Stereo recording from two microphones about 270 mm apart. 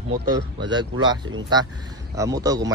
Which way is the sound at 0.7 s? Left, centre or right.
Centre.